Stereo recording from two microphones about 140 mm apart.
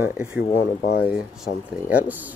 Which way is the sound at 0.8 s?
90° left.